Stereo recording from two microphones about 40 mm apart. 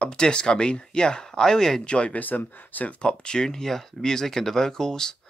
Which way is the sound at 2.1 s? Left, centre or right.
Left.